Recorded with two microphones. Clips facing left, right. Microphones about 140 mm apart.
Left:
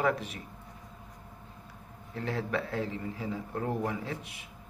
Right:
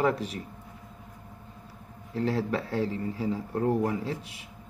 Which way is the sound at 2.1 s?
35° right (ahead or behind).